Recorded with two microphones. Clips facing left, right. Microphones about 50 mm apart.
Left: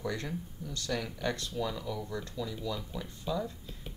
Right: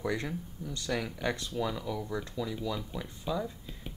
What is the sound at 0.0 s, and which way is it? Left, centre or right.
Speech, centre.